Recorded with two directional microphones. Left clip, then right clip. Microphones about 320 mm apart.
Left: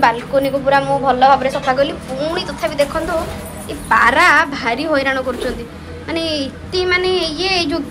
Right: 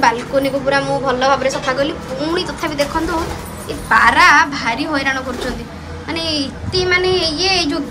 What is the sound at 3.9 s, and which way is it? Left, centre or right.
Speech, centre.